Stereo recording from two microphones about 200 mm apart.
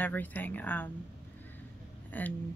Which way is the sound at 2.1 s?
10° left (ahead or behind).